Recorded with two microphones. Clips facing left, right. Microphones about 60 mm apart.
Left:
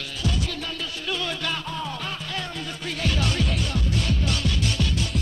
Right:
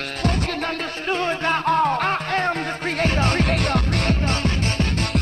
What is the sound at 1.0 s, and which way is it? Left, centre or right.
Music, right.